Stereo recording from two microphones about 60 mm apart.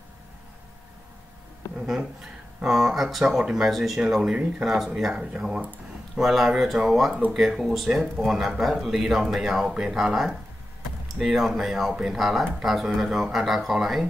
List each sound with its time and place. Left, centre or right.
2.6 s speech: centre
4.2 s speech: centre
4.6 s speech: centre
5.1 s speech: centre
6.1 s speech: centre